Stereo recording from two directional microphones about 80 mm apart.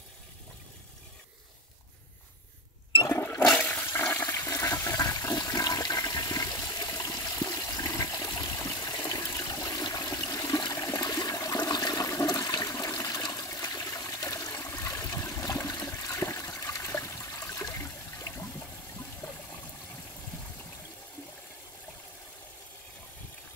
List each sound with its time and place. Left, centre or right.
3.2 s toilet flush: left
4.5 s toilet flush: left
7.2 s water: left
9.5 s toilet flush: left